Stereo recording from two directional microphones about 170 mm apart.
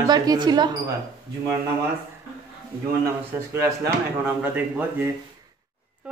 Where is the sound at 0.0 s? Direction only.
25° right (ahead or behind).